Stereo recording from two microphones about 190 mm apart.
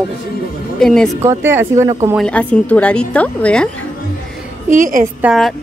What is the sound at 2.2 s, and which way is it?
A woman's voice, 5° left (ahead or behind).